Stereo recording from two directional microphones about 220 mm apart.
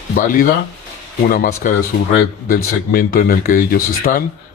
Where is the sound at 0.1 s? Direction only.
40° left (ahead or behind).